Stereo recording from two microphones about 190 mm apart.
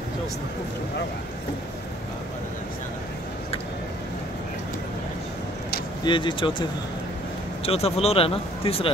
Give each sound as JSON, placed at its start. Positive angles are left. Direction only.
{"t": 6.0, "sound": "speech", "side_deg": 25}
{"t": 7.6, "sound": "speech", "side_deg": 30}